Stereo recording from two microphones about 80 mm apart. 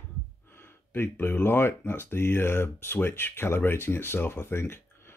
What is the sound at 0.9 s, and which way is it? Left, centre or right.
Speech, left.